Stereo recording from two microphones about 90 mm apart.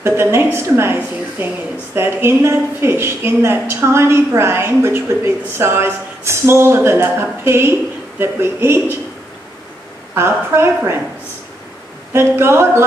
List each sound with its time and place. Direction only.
0.0 s a woman's voice: 25° right (ahead or behind)
10.1 s a woman's voice: 30° right (ahead or behind)
12.1 s a woman's voice: 25° right (ahead or behind)